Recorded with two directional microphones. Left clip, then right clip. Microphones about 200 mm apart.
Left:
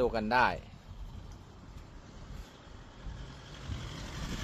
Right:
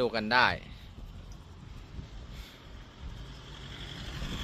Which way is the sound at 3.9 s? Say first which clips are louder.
Right 2 dB; 65° left (ahead or behind).